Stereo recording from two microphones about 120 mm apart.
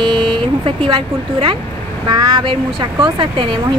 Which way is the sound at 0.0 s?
45° right (ahead or behind).